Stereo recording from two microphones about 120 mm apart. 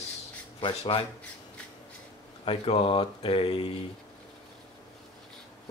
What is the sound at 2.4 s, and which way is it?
Speech, 55° left (ahead or behind).